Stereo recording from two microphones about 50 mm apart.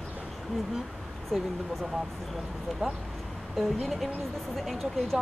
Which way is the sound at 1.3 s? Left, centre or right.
Centre.